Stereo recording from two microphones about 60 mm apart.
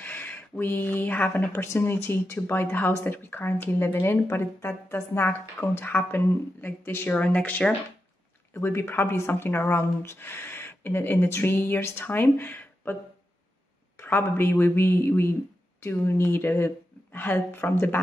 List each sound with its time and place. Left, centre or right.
0.0 s a woman's voice: left
7.1 s speech: left
8.5 s a woman's voice: left
13.9 s a woman's voice: left